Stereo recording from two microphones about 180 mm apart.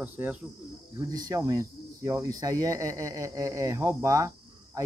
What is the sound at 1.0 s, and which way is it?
Speech, 20° right (ahead or behind).